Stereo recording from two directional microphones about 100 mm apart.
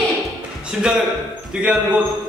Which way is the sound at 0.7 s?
10° right (ahead or behind).